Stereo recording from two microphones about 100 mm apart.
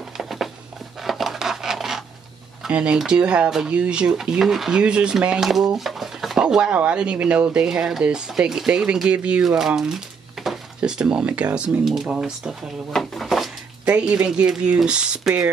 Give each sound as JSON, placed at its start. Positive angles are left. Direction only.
{"t": 0.2, "sound": "a sound", "side_deg": 0}
{"t": 2.6, "sound": "speech", "side_deg": -10}
{"t": 13.8, "sound": "speech", "side_deg": -10}